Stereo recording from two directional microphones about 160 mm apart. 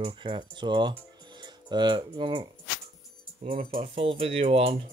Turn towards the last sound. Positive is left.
turn(degrees=-35)  # may be behind; listen again after turning